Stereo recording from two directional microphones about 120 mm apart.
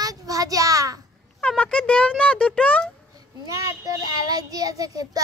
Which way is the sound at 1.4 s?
10° left (ahead or behind).